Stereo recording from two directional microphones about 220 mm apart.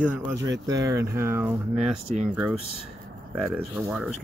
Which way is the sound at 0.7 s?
15° right (ahead or behind).